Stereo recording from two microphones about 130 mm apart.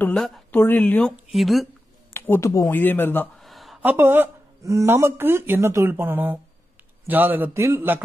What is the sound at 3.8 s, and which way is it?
Speech, 15° right (ahead or behind).